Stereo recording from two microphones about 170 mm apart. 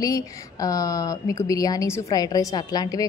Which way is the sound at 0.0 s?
20° left (ahead or behind).